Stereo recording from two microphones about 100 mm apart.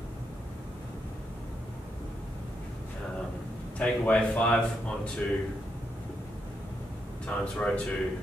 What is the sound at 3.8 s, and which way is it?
Speech, 10° left (ahead or behind).